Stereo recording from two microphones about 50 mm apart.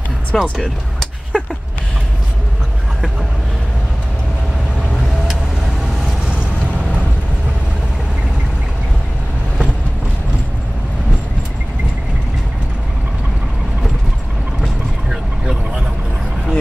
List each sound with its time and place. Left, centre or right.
0.3 s speech: centre
1.3 s a sound: centre
14.6 s vehicle: centre